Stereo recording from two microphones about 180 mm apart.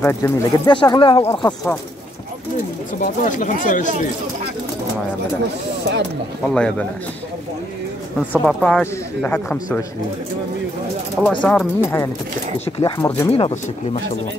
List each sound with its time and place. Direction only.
0.0 s speech: 15° left (ahead or behind)
3.0 s speech: 45° left (ahead or behind)
6.5 s a man's voice: 5° left (ahead or behind)
8.3 s speech: 5° left (ahead or behind)
11.2 s speech: 10° left (ahead or behind)
12.5 s speech: 35° left (ahead or behind)
12.9 s speech: 15° left (ahead or behind)
13.3 s speech: 35° left (ahead or behind)